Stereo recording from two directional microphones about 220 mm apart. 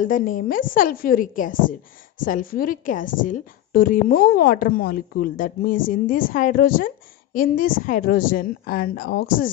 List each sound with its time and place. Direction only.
0.0 s a woman's voice: 40° left (ahead or behind)